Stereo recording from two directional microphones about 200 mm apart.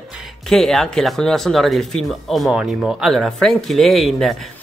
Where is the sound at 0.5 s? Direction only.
Centre (ahead or behind).